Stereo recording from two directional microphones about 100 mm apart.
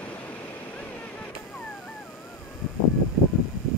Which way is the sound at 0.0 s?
15° left (ahead or behind).